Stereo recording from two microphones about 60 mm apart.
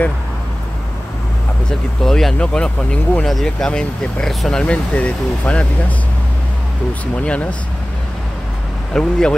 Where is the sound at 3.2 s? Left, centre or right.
Centre.